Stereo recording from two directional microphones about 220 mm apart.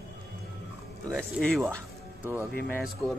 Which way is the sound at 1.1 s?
5° left (ahead or behind).